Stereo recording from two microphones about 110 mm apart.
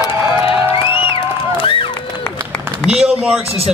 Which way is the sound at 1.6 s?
55° left (ahead or behind).